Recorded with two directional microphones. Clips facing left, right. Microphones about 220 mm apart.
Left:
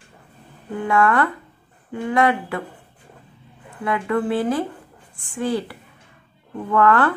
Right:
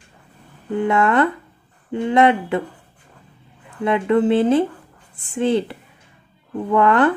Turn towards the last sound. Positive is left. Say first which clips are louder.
# right 2 dB
turn(degrees=-20)  # may be behind; listen again after turning